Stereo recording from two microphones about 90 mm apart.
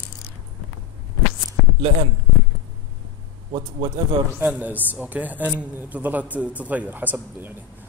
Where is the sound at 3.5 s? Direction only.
75° right (ahead or behind).